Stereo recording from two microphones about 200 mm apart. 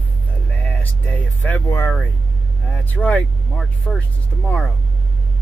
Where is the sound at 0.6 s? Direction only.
10° left (ahead or behind).